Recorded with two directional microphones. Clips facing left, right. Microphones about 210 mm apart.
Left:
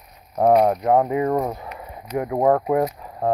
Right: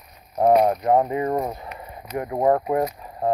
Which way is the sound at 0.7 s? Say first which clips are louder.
Left 1 dB; centre (ahead or behind).